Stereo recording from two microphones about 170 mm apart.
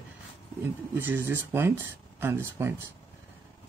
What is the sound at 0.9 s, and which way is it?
Speech, 10° right (ahead or behind).